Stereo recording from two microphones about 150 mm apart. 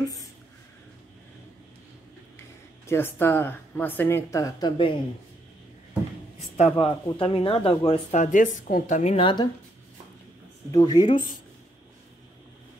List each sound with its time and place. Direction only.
2.9 s speech: 15° left (ahead or behind); by 4.9 s 30° left (ahead or behind)
6.5 s speech: 45° left (ahead or behind)
7.8 s speech: 45° left (ahead or behind)
9.1 s speech: 35° left (ahead or behind)
10.7 s speech: 25° left (ahead or behind)